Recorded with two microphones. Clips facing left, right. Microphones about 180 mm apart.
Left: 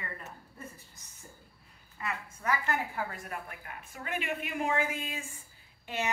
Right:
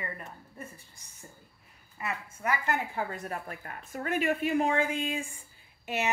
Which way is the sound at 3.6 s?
45° right (ahead or behind).